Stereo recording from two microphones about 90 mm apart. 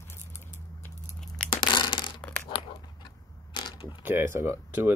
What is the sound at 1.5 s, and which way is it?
Crushing, 60° left (ahead or behind).